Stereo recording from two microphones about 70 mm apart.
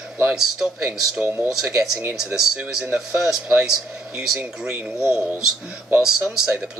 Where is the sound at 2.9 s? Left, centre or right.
Centre.